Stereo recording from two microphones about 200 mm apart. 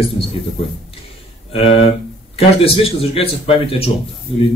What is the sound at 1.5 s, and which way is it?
Speech, 25° left (ahead or behind).